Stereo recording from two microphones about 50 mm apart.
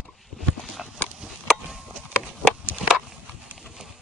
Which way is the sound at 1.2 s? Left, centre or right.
Centre.